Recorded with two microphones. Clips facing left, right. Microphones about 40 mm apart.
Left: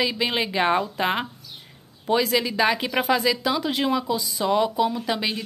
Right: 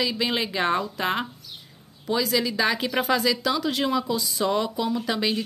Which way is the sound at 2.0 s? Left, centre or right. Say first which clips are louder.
Left 2 dB; left.